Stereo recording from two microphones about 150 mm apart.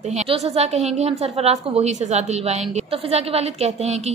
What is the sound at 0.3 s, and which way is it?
A woman's voice, 45° right (ahead or behind).